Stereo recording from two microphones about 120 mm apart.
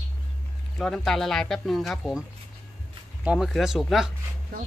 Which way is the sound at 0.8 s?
5° left (ahead or behind).